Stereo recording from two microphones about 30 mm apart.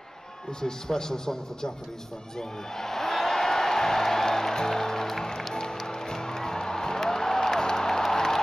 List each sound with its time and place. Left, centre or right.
0.5 s a man's voice: left
5.5 s music: centre